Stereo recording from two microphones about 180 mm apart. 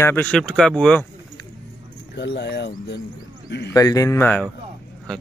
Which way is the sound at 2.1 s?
70° left (ahead or behind).